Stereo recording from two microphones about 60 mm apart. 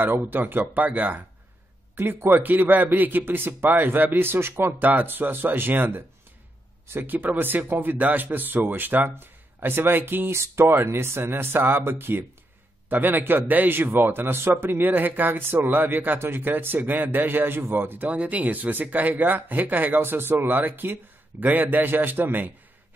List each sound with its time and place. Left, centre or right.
0.0 s a man's voice: right
2.0 s a man's voice: right
10.3 s a man's voice: right